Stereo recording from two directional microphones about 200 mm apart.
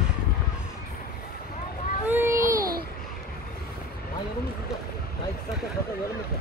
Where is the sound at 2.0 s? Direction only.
10° right (ahead or behind).